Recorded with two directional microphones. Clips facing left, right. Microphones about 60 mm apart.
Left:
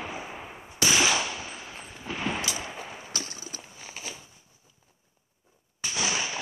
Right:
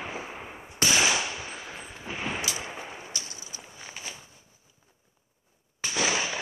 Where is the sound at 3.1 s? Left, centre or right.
Left.